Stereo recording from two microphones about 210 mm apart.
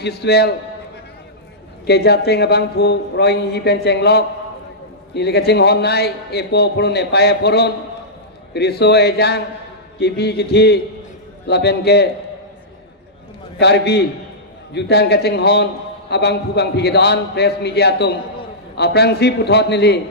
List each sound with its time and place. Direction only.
0.0 s a man's voice: 50° left (ahead or behind)
1.9 s a man's voice: 50° left (ahead or behind)
13.6 s a man's voice: 50° left (ahead or behind)